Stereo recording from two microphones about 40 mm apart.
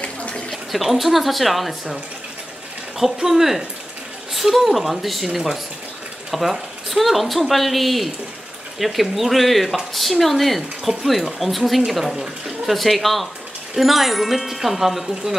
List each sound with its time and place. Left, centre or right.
0.0 s bathtub: left
0.7 s speech: centre
3.0 s speech: centre
12.7 s speech: centre